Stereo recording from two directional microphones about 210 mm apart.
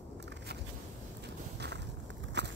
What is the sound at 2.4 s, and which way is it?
Walk, 55° right (ahead or behind).